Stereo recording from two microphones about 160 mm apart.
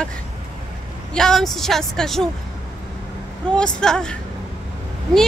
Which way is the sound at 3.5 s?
5° left (ahead or behind).